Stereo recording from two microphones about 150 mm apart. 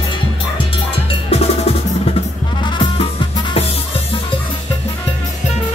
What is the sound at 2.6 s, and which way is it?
Music, 30° left (ahead or behind).